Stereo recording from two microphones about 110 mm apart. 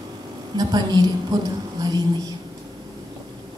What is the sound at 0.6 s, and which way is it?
Speech, 40° right (ahead or behind).